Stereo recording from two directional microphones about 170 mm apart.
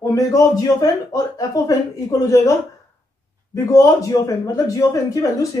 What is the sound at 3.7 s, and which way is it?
Speech, 20° left (ahead or behind).